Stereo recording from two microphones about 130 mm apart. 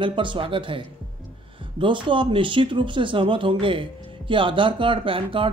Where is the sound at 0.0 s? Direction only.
40° right (ahead or behind).